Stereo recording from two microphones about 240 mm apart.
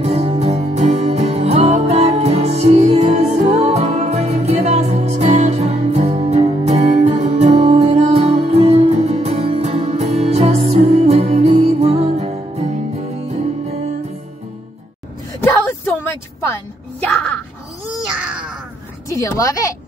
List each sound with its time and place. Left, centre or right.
0.0 s music: right
17.0 s music: centre
17.9 s babbling: centre
19.1 s a sound: centre